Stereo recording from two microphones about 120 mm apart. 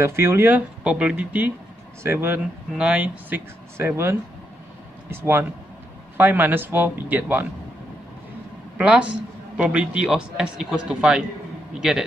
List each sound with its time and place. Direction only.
0.0 s a man's voice: 20° right (ahead or behind)
8.7 s a man's voice: 10° right (ahead or behind)